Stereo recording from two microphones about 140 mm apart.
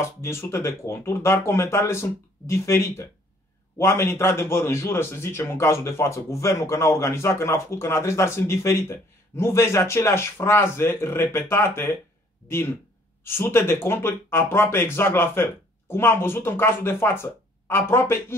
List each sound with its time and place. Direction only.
0.0 s a man's voice: 20° left (ahead or behind)